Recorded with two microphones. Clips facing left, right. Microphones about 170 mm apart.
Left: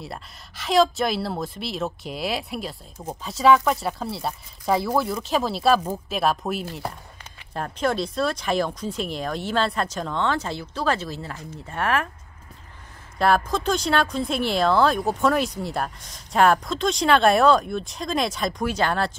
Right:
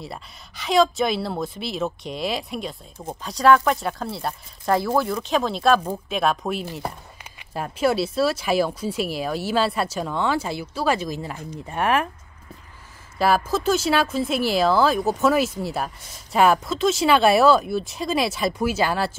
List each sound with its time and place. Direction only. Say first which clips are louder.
0.0 s speech: right 1 dB; centre (ahead or behind); by 12.1 s 15° right (ahead or behind)
13.2 s speech: right 1 dB; 5° right (ahead or behind)